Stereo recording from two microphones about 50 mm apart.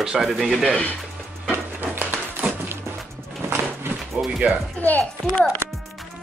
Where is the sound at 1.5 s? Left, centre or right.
Right.